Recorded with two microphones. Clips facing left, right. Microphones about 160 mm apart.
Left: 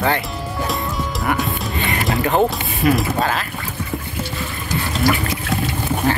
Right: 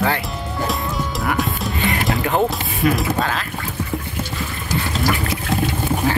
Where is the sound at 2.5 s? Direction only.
Centre (ahead or behind).